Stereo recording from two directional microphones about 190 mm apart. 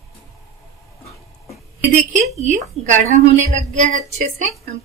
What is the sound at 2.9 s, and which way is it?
A woman's voice, 40° right (ahead or behind).